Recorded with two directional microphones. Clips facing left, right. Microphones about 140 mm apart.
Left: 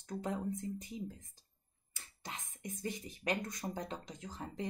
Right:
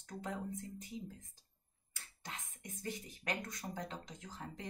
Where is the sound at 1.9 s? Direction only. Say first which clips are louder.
Left 2 dB; 20° left (ahead or behind).